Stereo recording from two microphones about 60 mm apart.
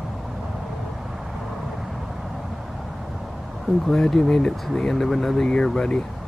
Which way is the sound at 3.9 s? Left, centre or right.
Centre.